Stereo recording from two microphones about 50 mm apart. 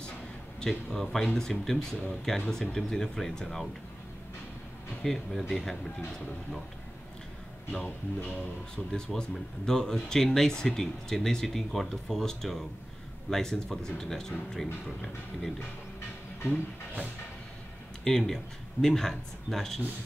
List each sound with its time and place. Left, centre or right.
0.6 s speech: centre
5.0 s speech: centre
7.8 s speech: left
9.1 s speech: centre
18.0 s speech: centre